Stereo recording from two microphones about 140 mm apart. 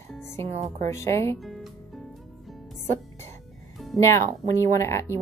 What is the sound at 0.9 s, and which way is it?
Speech, 20° left (ahead or behind).